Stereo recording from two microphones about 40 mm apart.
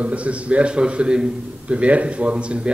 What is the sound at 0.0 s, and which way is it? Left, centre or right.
A man's voice, right.